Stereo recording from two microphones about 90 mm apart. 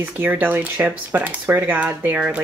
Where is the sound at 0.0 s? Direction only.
20° right (ahead or behind).